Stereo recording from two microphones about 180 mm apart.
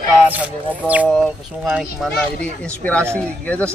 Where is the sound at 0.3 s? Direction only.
10° right (ahead or behind).